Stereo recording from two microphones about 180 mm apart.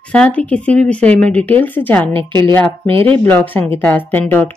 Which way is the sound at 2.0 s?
25° right (ahead or behind).